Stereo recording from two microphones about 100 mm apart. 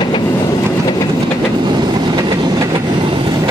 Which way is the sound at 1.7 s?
45° right (ahead or behind).